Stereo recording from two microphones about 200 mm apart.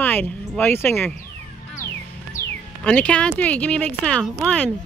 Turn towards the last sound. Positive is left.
turn(degrees=5)  # may be behind; listen again after turning